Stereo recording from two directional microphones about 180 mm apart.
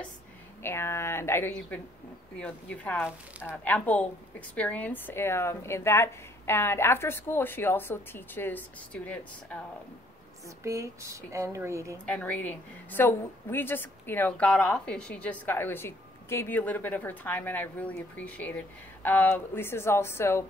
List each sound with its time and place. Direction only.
0.6 s a woman's voice: 15° left (ahead or behind)
10.6 s speech: 15° right (ahead or behind)
12.1 s a woman's voice: 5° left (ahead or behind)